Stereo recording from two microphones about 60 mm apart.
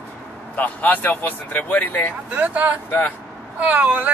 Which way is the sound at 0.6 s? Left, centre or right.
Left.